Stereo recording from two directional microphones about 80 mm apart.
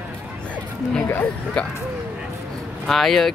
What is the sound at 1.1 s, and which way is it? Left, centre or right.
Speech, centre.